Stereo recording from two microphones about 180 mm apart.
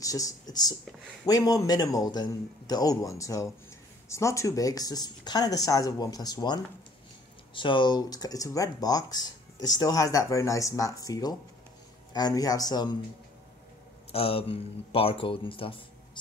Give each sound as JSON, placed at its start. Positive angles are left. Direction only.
{"t": 0.0, "sound": "speech", "side_deg": 20}
{"t": 14.1, "sound": "a man's voice", "side_deg": 30}